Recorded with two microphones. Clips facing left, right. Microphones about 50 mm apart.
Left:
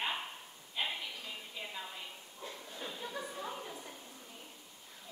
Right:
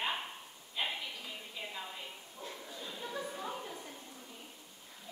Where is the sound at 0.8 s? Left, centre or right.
Centre.